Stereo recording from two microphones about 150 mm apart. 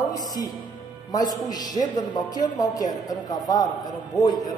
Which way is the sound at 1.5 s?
25° left (ahead or behind).